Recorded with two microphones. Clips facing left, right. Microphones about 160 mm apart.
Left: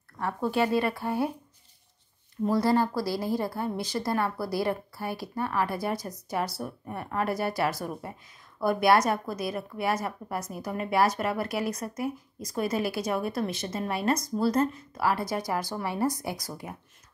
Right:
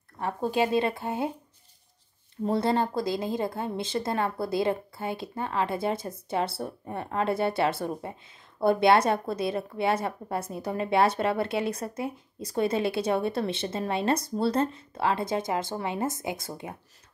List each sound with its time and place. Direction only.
0.2 s a woman's voice: 20° right (ahead or behind)
2.4 s a woman's voice: 25° right (ahead or behind)